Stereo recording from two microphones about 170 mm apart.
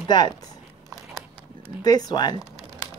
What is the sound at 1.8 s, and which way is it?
Speech, 25° left (ahead or behind).